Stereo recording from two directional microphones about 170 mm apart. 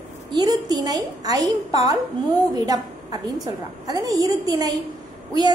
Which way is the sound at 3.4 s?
20° right (ahead or behind).